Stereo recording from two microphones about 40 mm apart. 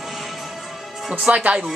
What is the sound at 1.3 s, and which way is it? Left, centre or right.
Speech, right.